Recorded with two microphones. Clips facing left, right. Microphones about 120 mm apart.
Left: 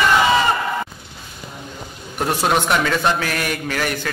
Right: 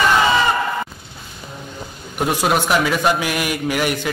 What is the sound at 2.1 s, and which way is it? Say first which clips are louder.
A man's voice: right 1 dB; 5° right (ahead or behind).